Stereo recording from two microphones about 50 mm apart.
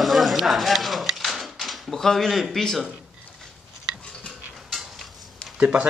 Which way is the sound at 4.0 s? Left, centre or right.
Centre.